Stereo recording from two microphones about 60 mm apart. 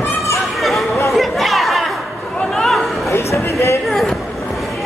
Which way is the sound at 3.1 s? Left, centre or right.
Left.